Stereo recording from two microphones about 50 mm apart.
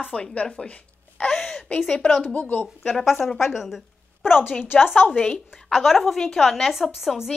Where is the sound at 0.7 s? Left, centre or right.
Left.